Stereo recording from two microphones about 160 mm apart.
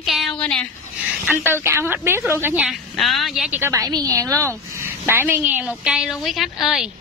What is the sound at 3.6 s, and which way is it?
A woman's voice, 20° right (ahead or behind).